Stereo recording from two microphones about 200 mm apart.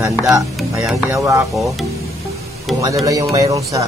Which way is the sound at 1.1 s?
15° right (ahead or behind).